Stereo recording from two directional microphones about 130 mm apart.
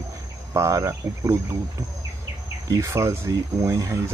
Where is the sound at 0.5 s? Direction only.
25° right (ahead or behind).